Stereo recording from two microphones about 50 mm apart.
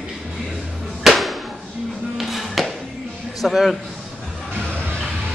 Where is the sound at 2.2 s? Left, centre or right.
Centre.